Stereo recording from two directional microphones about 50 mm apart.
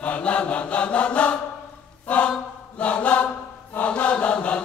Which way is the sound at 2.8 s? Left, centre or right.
Left.